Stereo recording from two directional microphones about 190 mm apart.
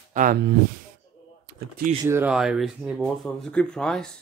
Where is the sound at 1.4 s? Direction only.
50° right (ahead or behind).